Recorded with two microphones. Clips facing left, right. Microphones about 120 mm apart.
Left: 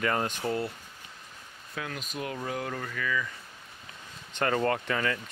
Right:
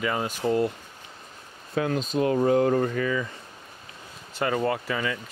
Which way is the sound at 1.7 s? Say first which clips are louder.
Right 12 dB; 30° right (ahead or behind).